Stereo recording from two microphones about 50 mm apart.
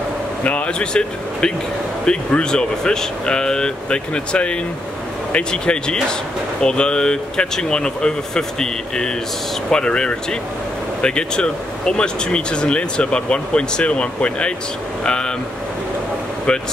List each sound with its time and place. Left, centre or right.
0.4 s speech: left